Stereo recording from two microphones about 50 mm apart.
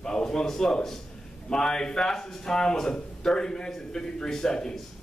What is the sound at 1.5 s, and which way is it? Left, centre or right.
A man's voice, centre.